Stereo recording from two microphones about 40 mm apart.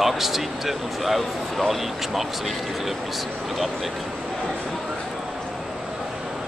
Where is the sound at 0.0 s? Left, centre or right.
Centre.